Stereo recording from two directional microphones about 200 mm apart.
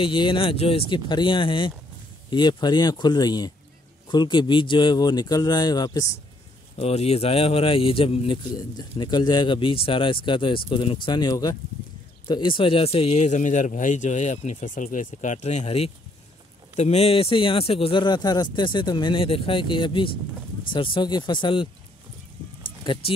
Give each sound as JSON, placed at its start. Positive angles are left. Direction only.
{"t": 0.0, "sound": "speech", "side_deg": 25}
{"t": 6.8, "sound": "speech", "side_deg": 30}
{"t": 22.9, "sound": "speech", "side_deg": 25}